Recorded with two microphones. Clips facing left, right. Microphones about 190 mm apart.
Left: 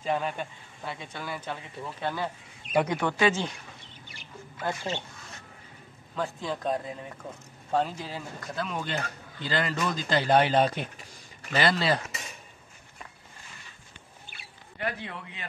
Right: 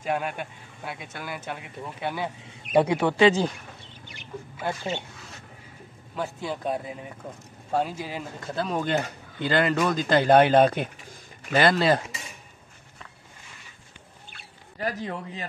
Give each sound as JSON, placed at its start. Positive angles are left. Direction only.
{"t": 0.0, "sound": "a man's voice", "side_deg": -10}
{"t": 2.7, "sound": "speech", "side_deg": -30}
{"t": 4.6, "sound": "speech", "side_deg": -5}
{"t": 6.1, "sound": "a man's voice", "side_deg": -5}
{"t": 8.5, "sound": "speech", "side_deg": -40}
{"t": 14.8, "sound": "speech", "side_deg": -35}